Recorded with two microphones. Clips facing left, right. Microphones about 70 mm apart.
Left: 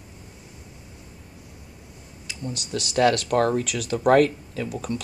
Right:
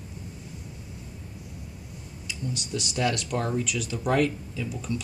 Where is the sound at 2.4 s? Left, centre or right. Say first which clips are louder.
Left 2 dB; left.